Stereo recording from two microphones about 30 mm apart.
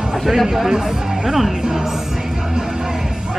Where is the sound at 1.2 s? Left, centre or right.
Centre.